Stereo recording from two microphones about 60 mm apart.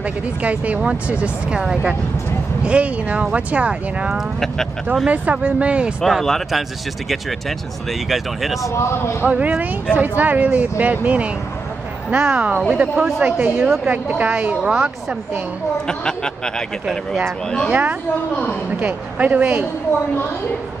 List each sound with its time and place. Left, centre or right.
0.4 s speech: right
4.1 s speech: centre
5.0 s speech: right
6.0 s speech: centre
8.6 s speech: left
9.2 s speech: right
15.9 s speech: centre
17.6 s speech: right
18.3 s a woman's voice: left
18.8 s speech: right